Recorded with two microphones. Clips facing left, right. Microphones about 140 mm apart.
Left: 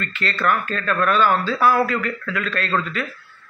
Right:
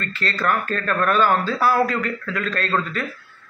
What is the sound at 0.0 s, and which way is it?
A man's voice, 35° right (ahead or behind).